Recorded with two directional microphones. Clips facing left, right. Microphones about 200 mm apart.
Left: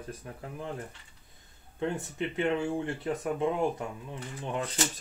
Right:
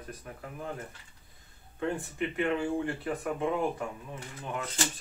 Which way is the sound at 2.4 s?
25° left (ahead or behind).